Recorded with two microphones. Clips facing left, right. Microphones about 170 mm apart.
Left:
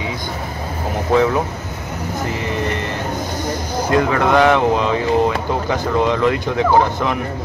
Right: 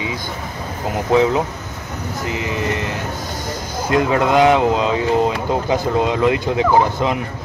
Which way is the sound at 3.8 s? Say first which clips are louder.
Even; 20° right (ahead or behind).